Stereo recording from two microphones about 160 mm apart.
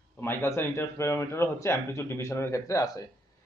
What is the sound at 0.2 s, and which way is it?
Speech, 15° left (ahead or behind).